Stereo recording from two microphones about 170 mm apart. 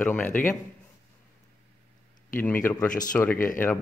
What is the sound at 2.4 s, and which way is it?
Speech, 10° left (ahead or behind).